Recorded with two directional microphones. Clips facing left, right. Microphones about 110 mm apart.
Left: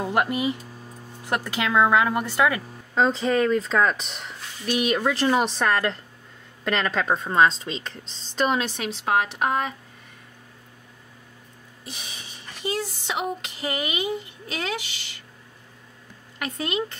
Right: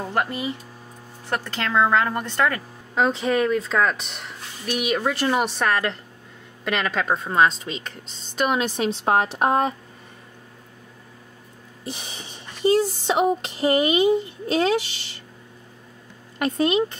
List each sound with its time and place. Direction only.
0.0 s a woman's voice: 15° left (ahead or behind)
3.0 s a woman's voice: 5° right (ahead or behind)
8.1 s speech: 35° left (ahead or behind)
8.4 s a woman's voice: 15° right (ahead or behind)
8.8 s speech: 35° right (ahead or behind)
11.9 s speech: 30° right (ahead or behind)
16.3 s speech: 25° right (ahead or behind)